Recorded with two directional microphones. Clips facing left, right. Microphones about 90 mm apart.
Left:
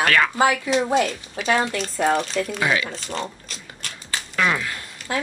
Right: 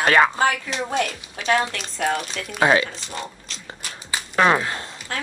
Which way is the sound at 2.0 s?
25° left (ahead or behind).